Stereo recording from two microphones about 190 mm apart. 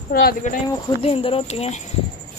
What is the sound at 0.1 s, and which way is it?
Speech, 50° left (ahead or behind).